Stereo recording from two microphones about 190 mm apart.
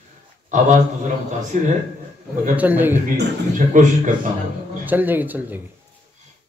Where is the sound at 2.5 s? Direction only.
10° right (ahead or behind).